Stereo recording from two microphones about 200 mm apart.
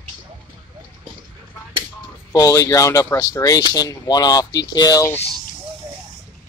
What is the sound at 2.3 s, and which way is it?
Speech, 15° left (ahead or behind).